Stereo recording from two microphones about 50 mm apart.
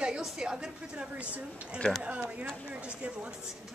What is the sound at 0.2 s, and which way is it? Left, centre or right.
Speech, centre.